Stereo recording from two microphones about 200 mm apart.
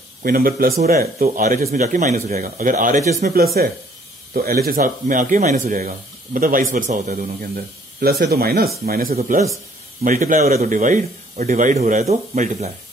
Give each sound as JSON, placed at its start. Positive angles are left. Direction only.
{"t": 0.2, "sound": "speech", "side_deg": -45}
{"t": 9.1, "sound": "a man's voice", "side_deg": -35}